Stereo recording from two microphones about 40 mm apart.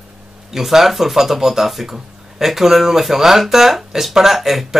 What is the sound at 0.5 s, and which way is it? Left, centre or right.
Speech, centre.